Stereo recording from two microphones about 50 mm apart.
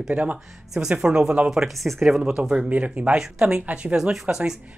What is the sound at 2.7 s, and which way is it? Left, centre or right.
Speech, right.